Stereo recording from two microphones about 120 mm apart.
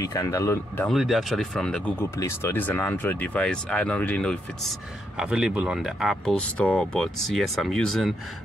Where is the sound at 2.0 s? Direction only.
20° left (ahead or behind).